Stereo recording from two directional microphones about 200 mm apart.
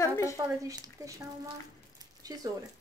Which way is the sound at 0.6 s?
15° right (ahead or behind).